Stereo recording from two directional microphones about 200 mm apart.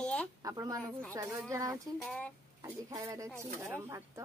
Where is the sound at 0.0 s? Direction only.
5° left (ahead or behind).